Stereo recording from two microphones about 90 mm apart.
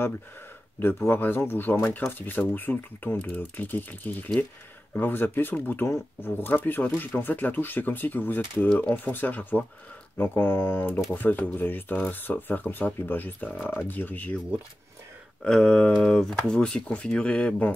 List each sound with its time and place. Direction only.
0.7 s speech: 25° left (ahead or behind)
15.4 s speech: 10° left (ahead or behind)